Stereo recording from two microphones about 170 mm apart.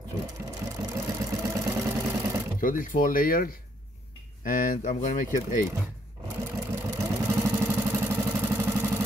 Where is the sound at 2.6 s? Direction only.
55° left (ahead or behind).